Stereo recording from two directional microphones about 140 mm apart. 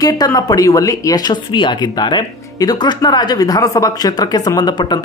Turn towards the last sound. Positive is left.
turn(degrees=30)  # may be behind; listen again after turning